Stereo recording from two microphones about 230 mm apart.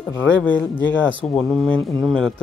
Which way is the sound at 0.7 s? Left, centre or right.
Centre.